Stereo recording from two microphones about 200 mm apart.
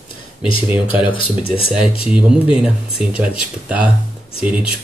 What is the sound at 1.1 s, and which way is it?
Speech, 25° left (ahead or behind).